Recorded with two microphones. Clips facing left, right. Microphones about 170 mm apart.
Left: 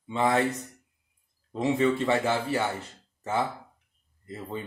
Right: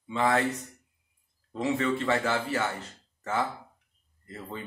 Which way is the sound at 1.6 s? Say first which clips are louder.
Left 3 dB; 20° left (ahead or behind).